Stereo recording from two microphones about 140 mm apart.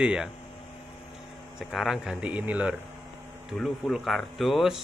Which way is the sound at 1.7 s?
Centre (ahead or behind).